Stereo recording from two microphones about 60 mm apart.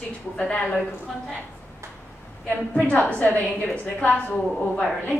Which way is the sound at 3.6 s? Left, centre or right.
Centre.